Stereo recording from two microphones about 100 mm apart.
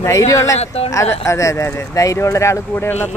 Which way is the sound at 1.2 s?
30° left (ahead or behind).